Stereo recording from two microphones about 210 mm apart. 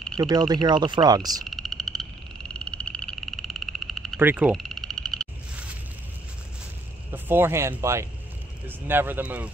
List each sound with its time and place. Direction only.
0.2 s speech: 20° right (ahead or behind)
1.4 s frog: centre (ahead or behind)
7.1 s speech: 10° right (ahead or behind)